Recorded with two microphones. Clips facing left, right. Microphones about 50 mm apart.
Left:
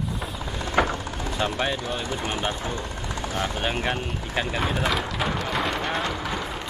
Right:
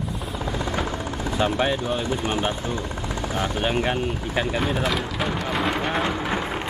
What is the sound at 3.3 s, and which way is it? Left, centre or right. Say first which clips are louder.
Speech: right 3 dB; centre.